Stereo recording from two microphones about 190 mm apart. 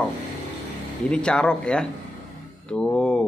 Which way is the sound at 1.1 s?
5° left (ahead or behind).